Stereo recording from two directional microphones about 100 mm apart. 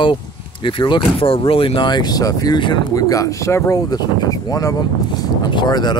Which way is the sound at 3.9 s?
45° left (ahead or behind).